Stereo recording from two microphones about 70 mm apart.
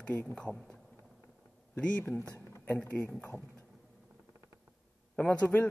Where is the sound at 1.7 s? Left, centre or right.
Centre.